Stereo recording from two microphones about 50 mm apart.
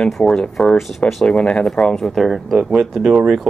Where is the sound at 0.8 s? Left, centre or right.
Centre.